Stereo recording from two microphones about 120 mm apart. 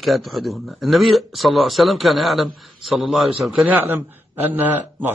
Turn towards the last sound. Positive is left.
turn(degrees=-15)  # may be behind; listen again after turning